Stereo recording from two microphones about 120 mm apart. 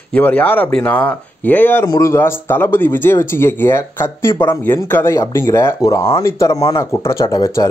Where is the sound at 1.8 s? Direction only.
30° left (ahead or behind).